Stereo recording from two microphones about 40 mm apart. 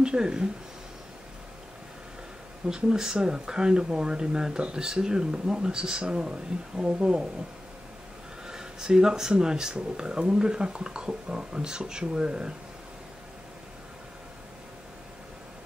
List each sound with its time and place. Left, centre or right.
0.0 s speech: centre
2.7 s speech: centre
8.5 s speech: centre